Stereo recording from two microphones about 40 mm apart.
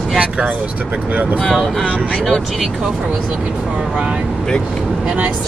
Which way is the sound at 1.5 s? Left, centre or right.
Centre.